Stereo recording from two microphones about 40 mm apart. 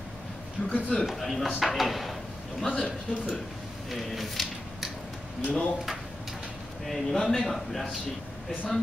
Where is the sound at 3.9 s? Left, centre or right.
Centre.